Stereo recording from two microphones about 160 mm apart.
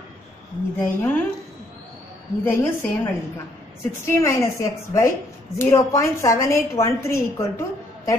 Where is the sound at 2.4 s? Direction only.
15° left (ahead or behind).